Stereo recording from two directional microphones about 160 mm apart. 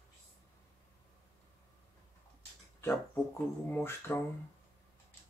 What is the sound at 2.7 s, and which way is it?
Speech, 15° left (ahead or behind).